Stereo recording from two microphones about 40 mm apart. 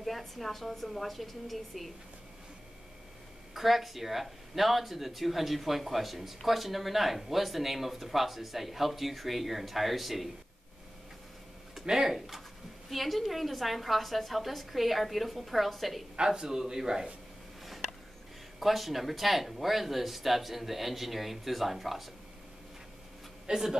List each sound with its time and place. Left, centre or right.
0.0 s speech: centre
3.5 s speech: centre
11.9 s a man's voice: centre
16.2 s a man's voice: centre
18.6 s speech: centre
23.4 s a man's voice: centre